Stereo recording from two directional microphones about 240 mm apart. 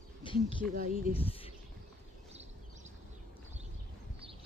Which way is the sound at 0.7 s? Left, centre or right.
Right.